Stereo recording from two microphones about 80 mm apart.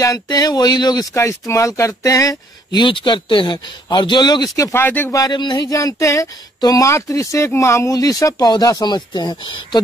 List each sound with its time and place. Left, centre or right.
0.0 s speech: left
1.5 s speech: left
2.7 s speech: left
4.7 s speech: left
5.3 s speech: left
5.7 s speech: left